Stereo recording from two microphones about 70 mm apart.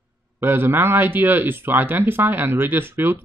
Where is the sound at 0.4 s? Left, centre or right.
Right.